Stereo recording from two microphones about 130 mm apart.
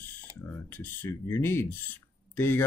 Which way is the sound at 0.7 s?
15° left (ahead or behind).